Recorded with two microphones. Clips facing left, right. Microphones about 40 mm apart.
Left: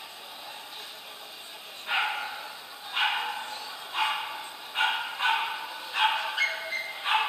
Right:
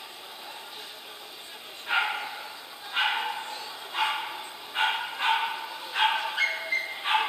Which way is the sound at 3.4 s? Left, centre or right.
Right.